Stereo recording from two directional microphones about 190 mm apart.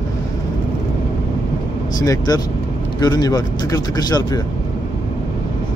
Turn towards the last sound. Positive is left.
turn(degrees=20)  # may be behind; listen again after turning